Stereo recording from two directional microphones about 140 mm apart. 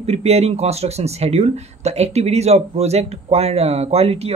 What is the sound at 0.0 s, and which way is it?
Speech, 50° right (ahead or behind).